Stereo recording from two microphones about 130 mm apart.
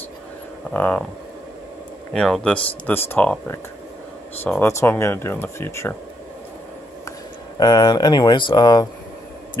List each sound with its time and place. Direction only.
0.7 s speech: 10° left (ahead or behind)
2.1 s speech: 5° left (ahead or behind)
7.5 s speech: 35° left (ahead or behind)